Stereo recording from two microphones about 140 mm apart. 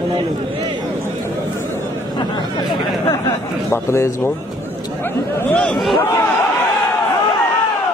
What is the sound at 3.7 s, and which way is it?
Speech, 20° left (ahead or behind).